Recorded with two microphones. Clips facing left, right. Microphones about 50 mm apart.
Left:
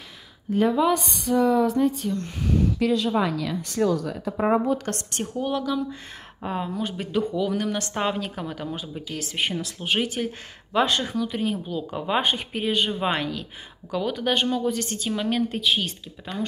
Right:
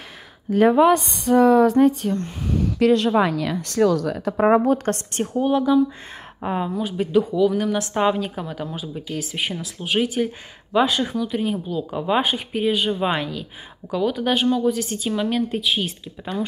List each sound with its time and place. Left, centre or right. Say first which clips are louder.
0.6 s speech: right 6 dB; right
1.3 s speech: right 6 dB; right
3.5 s speech: right 6 dB; right
4.8 s a woman's voice: right 6 dB; right; by 15.9 s centre